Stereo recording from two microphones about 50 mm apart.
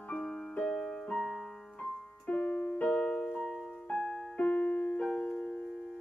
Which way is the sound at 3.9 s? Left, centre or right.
Centre.